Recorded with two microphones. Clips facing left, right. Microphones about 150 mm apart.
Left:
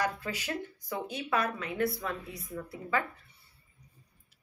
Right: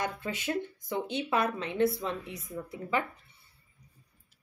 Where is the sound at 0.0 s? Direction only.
25° right (ahead or behind).